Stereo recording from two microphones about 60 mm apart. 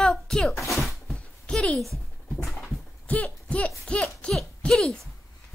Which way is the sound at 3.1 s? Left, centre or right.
Left.